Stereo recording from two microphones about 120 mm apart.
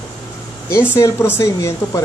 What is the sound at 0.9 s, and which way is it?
Speech, 20° left (ahead or behind).